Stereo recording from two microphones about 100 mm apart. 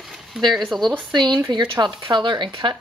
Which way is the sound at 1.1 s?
45° right (ahead or behind).